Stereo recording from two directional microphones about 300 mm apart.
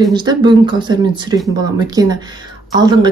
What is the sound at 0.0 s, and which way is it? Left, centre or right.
Speech, centre.